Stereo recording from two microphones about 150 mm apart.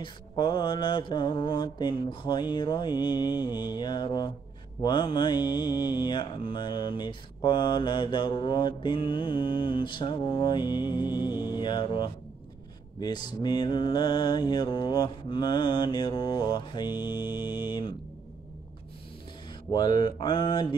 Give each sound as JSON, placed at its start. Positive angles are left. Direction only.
{"t": 0.0, "sound": "mantra", "side_deg": 30}
{"t": 19.7, "sound": "mantra", "side_deg": 30}